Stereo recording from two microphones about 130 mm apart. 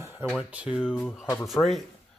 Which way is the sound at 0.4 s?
10° right (ahead or behind).